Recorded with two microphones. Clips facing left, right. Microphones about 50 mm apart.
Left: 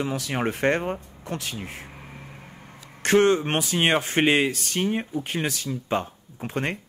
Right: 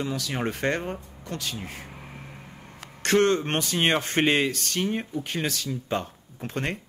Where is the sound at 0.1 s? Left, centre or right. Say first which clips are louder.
Left 2 dB; left.